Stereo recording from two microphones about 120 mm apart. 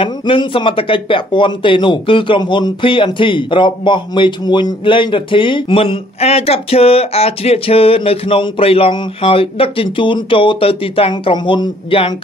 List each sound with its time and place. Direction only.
0.0 s speech: 40° left (ahead or behind)